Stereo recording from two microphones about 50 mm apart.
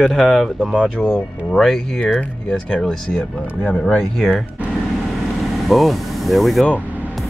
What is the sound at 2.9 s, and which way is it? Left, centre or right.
Speech, centre.